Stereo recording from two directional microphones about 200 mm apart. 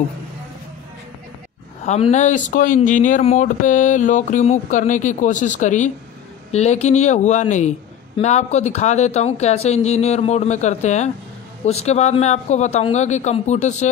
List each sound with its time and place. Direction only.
1.9 s speech: 35° left (ahead or behind)